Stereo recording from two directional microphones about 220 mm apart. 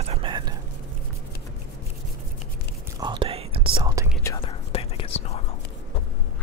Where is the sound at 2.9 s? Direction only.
20° right (ahead or behind).